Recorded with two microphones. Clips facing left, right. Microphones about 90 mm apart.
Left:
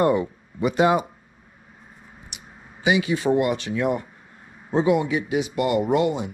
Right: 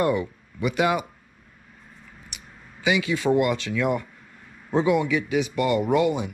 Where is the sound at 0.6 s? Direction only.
30° left (ahead or behind).